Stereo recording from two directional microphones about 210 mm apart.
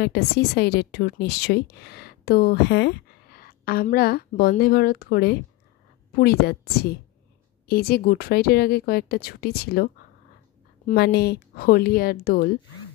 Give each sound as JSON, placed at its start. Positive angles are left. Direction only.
{"t": 0.0, "sound": "a woman's voice", "side_deg": 50}
{"t": 10.9, "sound": "a woman's voice", "side_deg": 50}